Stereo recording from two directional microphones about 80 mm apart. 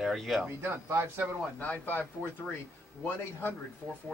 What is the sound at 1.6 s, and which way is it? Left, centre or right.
Speech, centre.